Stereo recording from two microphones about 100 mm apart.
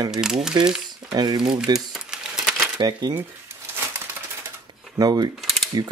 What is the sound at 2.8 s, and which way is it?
Speech, 45° right (ahead or behind).